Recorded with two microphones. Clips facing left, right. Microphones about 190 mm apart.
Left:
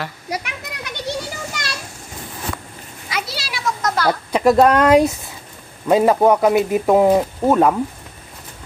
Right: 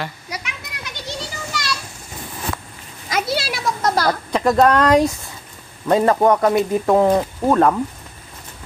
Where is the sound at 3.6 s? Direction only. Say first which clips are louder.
Left 1 dB; 35° right (ahead or behind).